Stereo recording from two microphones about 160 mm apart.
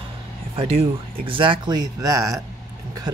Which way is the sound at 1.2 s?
30° right (ahead or behind).